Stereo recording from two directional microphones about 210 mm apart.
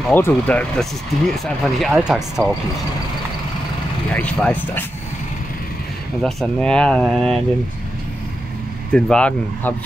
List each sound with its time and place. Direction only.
0.1 s speech: 10° left (ahead or behind)
2.4 s speech: 15° right (ahead or behind)
4.1 s speech: 5° left (ahead or behind)
6.2 s speech: 5° left (ahead or behind)
8.9 s speech: 5° left (ahead or behind)